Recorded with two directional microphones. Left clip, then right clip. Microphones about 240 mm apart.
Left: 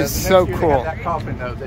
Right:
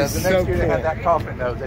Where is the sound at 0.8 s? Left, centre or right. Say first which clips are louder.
Right 4 dB; right.